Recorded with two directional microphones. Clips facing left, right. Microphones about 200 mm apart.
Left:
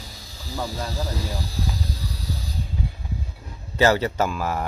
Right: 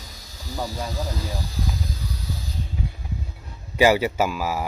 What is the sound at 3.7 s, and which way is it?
Speech, 10° right (ahead or behind).